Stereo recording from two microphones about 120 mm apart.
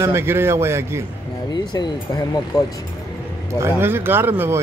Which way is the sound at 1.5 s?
35° left (ahead or behind).